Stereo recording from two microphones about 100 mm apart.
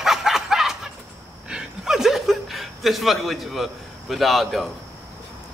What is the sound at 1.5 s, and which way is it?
Chuckle, 5° right (ahead or behind).